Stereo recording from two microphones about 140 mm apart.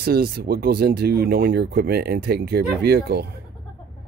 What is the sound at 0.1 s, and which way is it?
Speech, 90° right.